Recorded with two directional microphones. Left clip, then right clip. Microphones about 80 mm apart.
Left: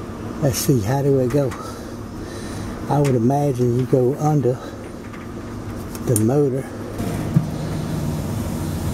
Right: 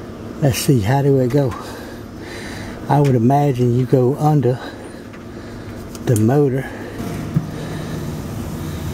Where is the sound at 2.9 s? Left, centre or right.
Right.